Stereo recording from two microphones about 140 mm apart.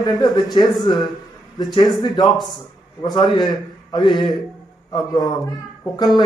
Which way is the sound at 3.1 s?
30° left (ahead or behind).